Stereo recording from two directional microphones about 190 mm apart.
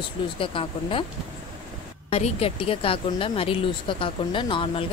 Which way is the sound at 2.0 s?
30° left (ahead or behind).